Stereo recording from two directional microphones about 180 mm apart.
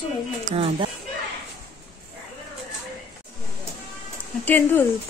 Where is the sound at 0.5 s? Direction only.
30° right (ahead or behind).